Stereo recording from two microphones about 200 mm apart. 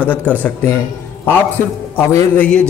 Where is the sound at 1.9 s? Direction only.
10° left (ahead or behind).